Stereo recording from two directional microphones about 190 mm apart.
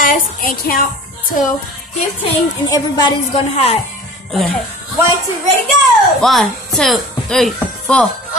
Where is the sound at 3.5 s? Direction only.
35° left (ahead or behind).